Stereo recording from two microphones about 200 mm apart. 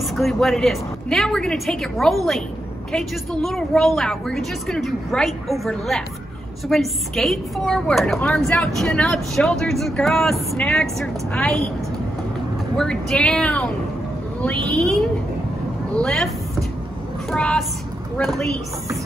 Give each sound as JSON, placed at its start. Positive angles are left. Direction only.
{"t": 0.1, "sound": "a woman's voice", "side_deg": 0}
{"t": 12.7, "sound": "a woman's voice", "side_deg": 5}
{"t": 17.3, "sound": "a woman's voice", "side_deg": 5}